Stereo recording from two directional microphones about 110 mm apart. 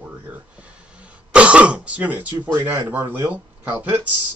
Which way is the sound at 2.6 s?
15° right (ahead or behind).